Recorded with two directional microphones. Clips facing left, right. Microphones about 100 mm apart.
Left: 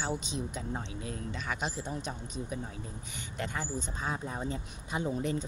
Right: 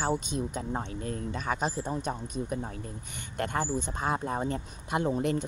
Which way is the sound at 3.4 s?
55° right (ahead or behind).